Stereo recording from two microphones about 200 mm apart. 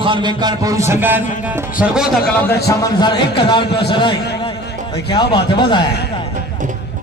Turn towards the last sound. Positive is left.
turn(degrees=25)  # may be behind; listen again after turning